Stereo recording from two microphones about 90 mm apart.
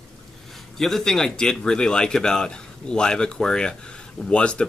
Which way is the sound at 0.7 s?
5° left (ahead or behind).